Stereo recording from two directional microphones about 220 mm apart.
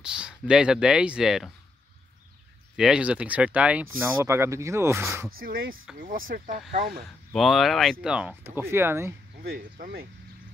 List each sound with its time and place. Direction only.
0.0 s speech: 5° right (ahead or behind)
2.7 s speech: 5° right (ahead or behind)
5.4 s speech: 40° right (ahead or behind)
7.3 s speech: centre (ahead or behind)
9.4 s speech: 40° right (ahead or behind)